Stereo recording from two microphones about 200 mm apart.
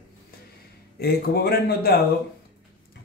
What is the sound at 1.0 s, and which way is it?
A man's voice, 50° left (ahead or behind).